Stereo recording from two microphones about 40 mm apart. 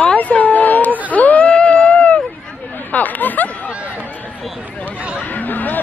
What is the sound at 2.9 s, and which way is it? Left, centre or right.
Chatter, left.